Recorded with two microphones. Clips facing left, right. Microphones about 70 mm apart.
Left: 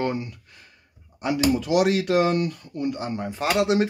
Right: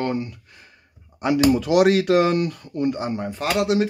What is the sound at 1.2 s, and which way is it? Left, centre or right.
Speech, right.